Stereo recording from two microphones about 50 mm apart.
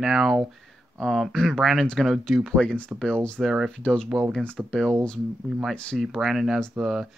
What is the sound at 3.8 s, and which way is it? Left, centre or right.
Speech, left.